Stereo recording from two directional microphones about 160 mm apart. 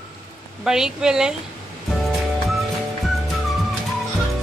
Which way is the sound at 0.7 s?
5° right (ahead or behind).